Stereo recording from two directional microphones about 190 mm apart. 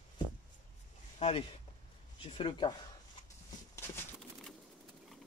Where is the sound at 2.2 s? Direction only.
30° left (ahead or behind).